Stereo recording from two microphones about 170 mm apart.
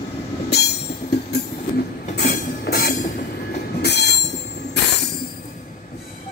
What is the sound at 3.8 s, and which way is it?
Train, 80° left.